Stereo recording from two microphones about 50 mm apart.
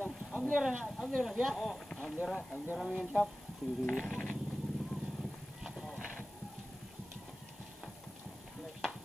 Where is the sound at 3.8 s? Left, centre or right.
Centre.